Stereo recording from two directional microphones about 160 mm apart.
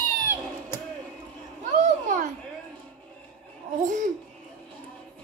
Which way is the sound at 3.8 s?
50° right (ahead or behind).